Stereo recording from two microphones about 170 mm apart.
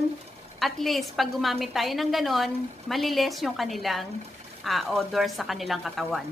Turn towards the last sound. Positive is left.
turn(degrees=0)  # may be behind; listen again after turning